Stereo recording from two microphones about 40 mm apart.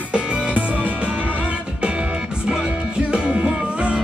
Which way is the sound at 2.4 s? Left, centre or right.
Right.